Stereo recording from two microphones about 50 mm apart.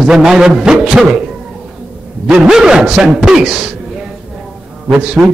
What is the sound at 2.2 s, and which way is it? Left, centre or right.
A man's voice, centre.